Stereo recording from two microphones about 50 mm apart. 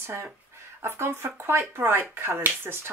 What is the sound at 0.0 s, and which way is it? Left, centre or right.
Speech, right.